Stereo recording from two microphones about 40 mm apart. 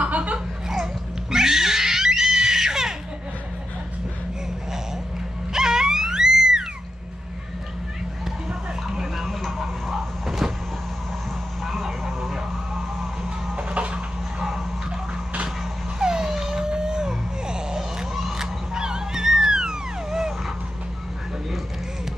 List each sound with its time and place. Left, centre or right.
0.0 s chuckle: right
1.3 s screaming: centre
5.5 s music: centre
8.5 s a sound: centre
9.1 s vehicle: centre
12.0 s music: centre
13.6 s a sound: right
14.4 s music: centre
16.0 s dog: centre
17.5 s music: centre
18.1 s a sound: centre